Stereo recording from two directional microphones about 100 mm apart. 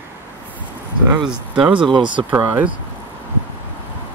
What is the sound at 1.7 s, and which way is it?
Speech, 50° right (ahead or behind).